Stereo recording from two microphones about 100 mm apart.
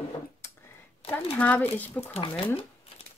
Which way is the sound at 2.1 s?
70° left (ahead or behind).